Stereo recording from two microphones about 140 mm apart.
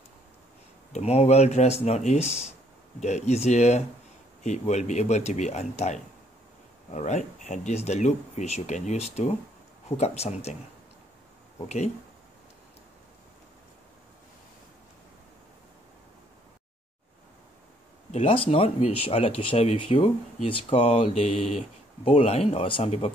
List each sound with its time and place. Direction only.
0.9 s speech: 50° left (ahead or behind)
11.5 s speech: 50° left (ahead or behind)
18.1 s speech: 40° left (ahead or behind)